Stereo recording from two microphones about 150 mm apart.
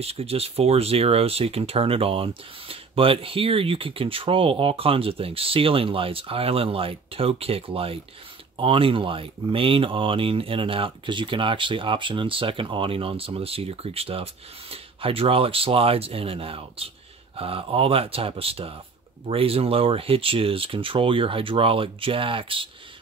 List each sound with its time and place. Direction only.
0.0 s speech: 40° right (ahead or behind)